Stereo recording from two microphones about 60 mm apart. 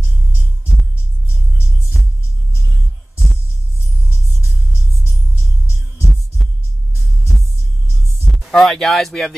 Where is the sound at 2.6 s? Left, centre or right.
Right.